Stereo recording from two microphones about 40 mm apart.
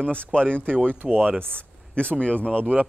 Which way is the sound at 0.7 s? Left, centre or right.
Right.